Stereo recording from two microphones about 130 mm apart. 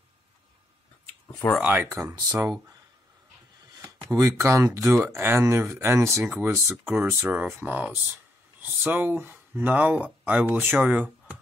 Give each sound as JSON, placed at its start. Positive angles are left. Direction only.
{"t": 1.6, "sound": "speech", "side_deg": -15}
{"t": 4.0, "sound": "speech", "side_deg": -25}